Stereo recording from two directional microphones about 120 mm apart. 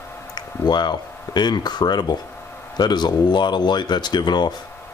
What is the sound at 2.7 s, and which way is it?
Speech, 35° left (ahead or behind).